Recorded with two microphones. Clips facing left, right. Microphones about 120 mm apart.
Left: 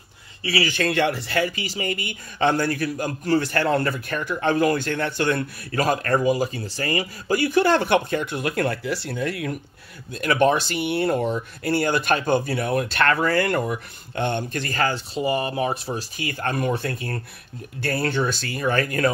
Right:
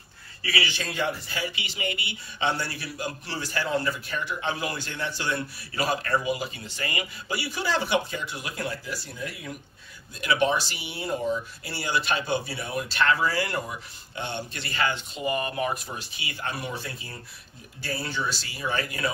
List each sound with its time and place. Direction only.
0.4 s speech: 30° left (ahead or behind)
0.7 s speech: 60° left (ahead or behind)
1.5 s speech: 40° left (ahead or behind); by 9.6 s 70° left (ahead or behind)
10.2 s speech: 50° left (ahead or behind)